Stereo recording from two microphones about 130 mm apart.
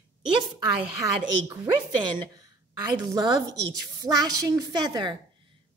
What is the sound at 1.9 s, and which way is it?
A woman's voice, 35° right (ahead or behind).